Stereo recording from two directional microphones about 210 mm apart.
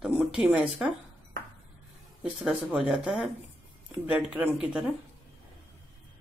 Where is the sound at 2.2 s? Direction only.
5° right (ahead or behind).